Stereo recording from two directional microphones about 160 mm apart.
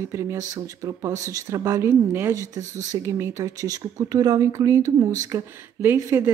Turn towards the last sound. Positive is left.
turn(degrees=-15)  # may be behind; listen again after turning